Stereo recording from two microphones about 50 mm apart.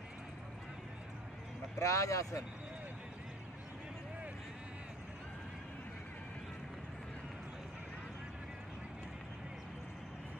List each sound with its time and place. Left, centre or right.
1.8 s speech: left